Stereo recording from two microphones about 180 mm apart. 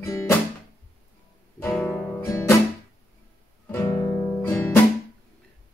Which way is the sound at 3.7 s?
15° left (ahead or behind).